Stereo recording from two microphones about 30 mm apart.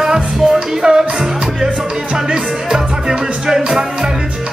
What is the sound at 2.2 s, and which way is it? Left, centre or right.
Music, right.